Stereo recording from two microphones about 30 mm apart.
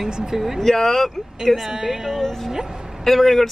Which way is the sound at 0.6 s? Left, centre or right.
Centre.